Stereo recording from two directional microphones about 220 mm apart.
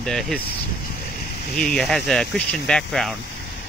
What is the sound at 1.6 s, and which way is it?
Speech, 5° left (ahead or behind).